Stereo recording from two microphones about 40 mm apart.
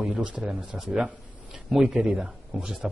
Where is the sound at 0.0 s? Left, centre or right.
Right.